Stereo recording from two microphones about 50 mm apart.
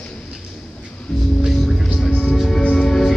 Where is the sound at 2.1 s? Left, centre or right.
Centre.